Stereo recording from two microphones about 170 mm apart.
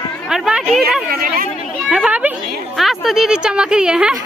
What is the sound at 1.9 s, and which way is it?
A woman's voice, 5° right (ahead or behind).